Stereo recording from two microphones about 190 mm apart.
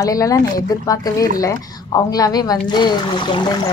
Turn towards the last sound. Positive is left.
turn(degrees=25)  # may be behind; listen again after turning